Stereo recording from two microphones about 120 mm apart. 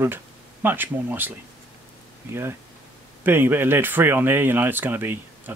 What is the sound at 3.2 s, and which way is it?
Speech, 15° right (ahead or behind).